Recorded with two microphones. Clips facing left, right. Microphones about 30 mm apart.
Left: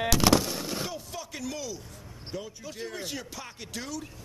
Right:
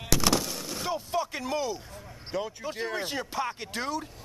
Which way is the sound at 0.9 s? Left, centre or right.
Right.